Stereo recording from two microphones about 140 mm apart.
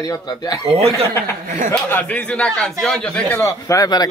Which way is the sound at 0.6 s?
45° right (ahead or behind).